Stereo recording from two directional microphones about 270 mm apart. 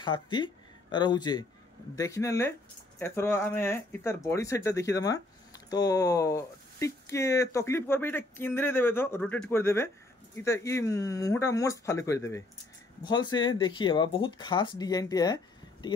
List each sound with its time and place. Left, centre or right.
0.0 s speech: centre